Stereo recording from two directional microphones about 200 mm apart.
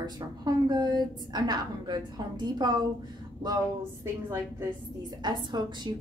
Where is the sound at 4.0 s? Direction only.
15° right (ahead or behind).